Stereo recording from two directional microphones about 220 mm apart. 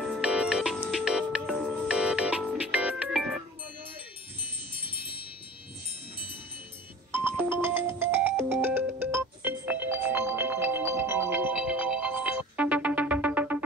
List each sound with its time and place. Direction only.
0.0 s music: centre (ahead or behind)
4.7 s wind chime: 20° left (ahead or behind)
7.2 s music: 10° right (ahead or behind)